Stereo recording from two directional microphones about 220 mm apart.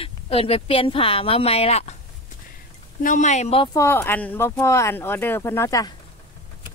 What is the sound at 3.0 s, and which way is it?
Speech, 35° left (ahead or behind).